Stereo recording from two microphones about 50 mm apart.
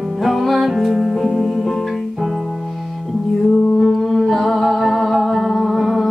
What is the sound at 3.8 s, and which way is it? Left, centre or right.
Music, centre.